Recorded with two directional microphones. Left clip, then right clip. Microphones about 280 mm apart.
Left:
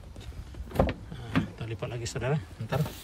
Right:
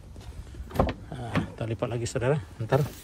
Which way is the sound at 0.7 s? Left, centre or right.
Centre.